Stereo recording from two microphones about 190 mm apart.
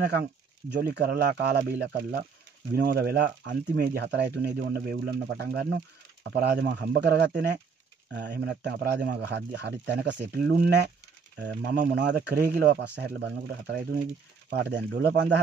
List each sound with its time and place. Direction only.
0.1 s speech: 60° right (ahead or behind)